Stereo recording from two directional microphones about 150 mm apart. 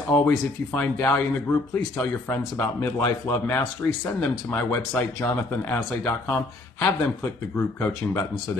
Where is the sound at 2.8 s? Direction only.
20° left (ahead or behind).